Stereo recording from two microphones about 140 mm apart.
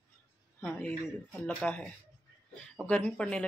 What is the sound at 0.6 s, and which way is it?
Speech, 10° left (ahead or behind).